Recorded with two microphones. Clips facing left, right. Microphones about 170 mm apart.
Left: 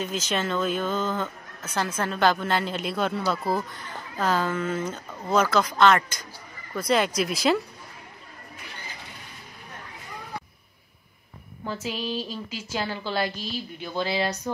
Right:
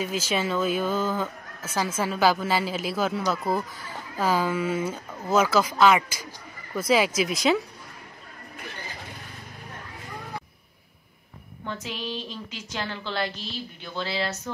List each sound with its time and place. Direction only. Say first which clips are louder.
0.0 s speech: right 1 dB; 5° right (ahead or behind)
11.6 s a woman's voice: left 3 dB; 5° left (ahead or behind)